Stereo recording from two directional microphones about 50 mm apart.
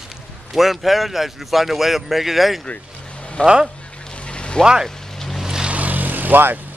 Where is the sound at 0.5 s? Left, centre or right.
Centre.